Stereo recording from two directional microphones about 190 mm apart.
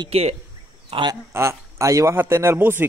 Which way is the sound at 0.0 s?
30° right (ahead or behind).